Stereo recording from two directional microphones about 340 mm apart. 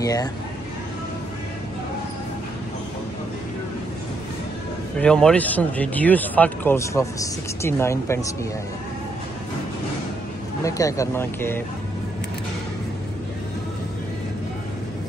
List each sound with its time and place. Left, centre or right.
0.0 s speech: centre
4.9 s speech: centre
10.6 s speech: centre